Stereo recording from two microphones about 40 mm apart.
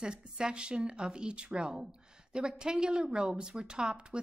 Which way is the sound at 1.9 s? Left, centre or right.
Right.